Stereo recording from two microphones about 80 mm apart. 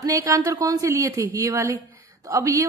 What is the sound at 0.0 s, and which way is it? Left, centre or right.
A woman's voice, right.